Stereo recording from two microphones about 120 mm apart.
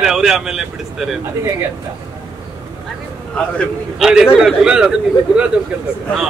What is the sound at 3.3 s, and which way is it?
Speech, 10° left (ahead or behind).